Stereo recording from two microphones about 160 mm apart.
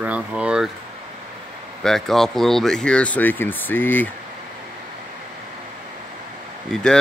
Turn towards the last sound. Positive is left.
turn(degrees=5)  # may be behind; listen again after turning